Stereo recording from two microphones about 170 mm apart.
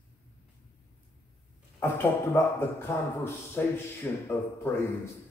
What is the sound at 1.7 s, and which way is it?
Speech, 15° left (ahead or behind).